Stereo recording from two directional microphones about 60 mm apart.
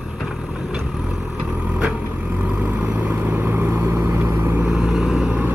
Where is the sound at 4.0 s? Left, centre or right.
Right.